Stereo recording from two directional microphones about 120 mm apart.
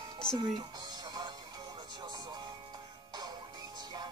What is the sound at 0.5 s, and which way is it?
Music, 35° right (ahead or behind).